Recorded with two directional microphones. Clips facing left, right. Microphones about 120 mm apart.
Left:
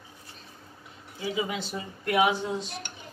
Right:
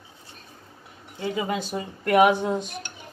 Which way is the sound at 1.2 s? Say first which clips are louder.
Right 3 dB; 55° right (ahead or behind).